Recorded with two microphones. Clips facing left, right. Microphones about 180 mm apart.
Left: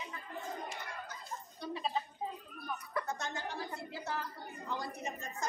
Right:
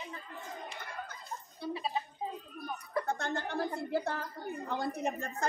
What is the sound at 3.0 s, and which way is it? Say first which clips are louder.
A woman's voice: right 5 dB; 55° right (ahead or behind).